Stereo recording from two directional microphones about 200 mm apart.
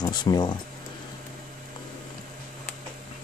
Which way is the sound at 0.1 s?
20° left (ahead or behind).